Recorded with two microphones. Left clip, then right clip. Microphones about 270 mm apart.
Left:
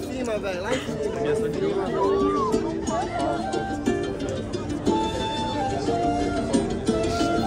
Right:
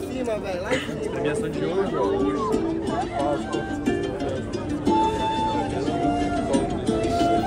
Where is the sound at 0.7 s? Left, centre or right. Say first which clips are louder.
Even; right.